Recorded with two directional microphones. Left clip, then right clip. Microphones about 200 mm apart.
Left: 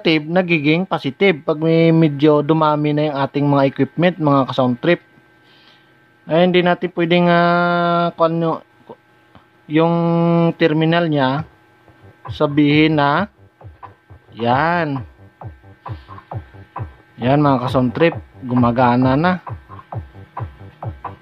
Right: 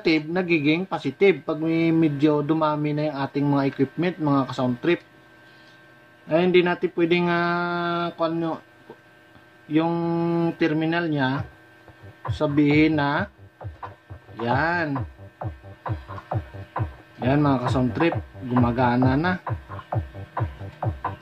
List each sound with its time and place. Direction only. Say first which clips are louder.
0.0 s speech: left 6 dB; 50° left (ahead or behind)
6.2 s speech: left 5 dB; 50° left (ahead or behind)
9.7 s speech: left 7 dB; 50° left (ahead or behind)
14.4 s speech: left 7 dB; 50° left (ahead or behind)
15.3 s music: right 3 dB; 20° right (ahead or behind)
17.2 s speech: left 7 dB; 50° left (ahead or behind)
20.8 s a sound: right 2 dB; 20° right (ahead or behind)